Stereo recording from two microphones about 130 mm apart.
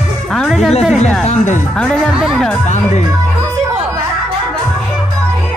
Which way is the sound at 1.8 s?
5° left (ahead or behind).